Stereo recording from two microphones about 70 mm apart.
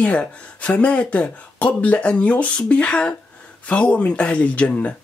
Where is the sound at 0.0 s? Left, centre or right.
Centre.